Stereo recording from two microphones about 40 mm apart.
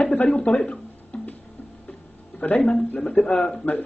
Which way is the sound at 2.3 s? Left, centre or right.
Left.